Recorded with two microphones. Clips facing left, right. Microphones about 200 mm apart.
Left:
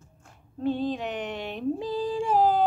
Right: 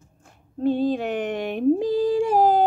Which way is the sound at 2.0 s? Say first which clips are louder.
Right 8 dB; 70° right (ahead or behind).